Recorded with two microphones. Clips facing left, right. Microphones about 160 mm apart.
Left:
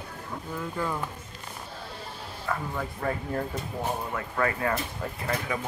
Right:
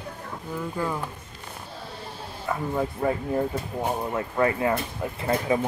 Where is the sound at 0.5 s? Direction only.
10° right (ahead or behind).